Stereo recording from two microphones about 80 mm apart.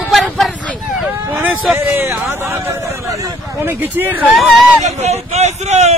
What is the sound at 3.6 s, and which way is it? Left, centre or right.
Speech, right.